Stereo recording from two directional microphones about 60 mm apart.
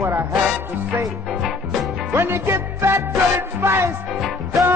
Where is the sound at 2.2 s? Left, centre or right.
Right.